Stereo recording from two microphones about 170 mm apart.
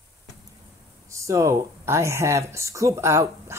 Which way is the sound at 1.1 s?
15° right (ahead or behind).